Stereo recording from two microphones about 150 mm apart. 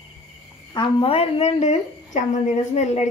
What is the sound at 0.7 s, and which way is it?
A woman's voice, 35° left (ahead or behind).